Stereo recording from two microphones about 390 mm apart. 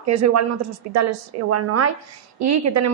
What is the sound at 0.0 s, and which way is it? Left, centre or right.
A woman's voice, right.